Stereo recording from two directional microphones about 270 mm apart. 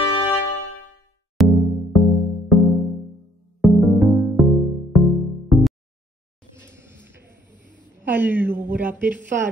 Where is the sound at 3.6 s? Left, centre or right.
Centre.